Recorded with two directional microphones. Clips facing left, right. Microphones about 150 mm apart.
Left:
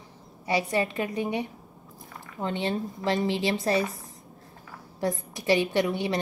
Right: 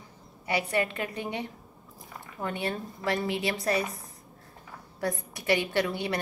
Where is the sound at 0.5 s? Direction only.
25° left (ahead or behind).